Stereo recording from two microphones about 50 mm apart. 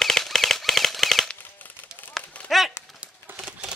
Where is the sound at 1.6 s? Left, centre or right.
Left.